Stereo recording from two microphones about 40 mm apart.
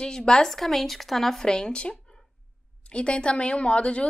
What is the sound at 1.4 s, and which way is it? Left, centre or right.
A woman's voice, centre.